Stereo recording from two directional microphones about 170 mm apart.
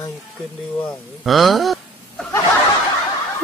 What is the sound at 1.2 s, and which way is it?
Speech, centre (ahead or behind).